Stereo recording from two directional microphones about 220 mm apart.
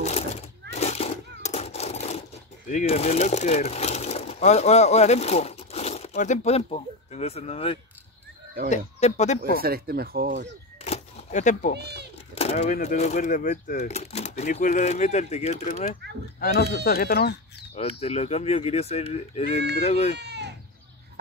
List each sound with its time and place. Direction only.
0.0 s a sound: 30° left (ahead or behind)
2.7 s speech: 30° left (ahead or behind)
9.6 s speech: 45° right (ahead or behind)
10.8 s cat: 30° left (ahead or behind)
11.8 s a sound: 50° right (ahead or behind)
12.4 s speech: 30° left (ahead or behind)
16.3 s speech: 40° left (ahead or behind)
17.7 s speech: 30° left (ahead or behind)
20.2 s goat: 50° right (ahead or behind)